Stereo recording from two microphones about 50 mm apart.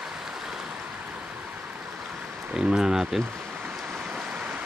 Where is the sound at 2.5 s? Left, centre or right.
Centre.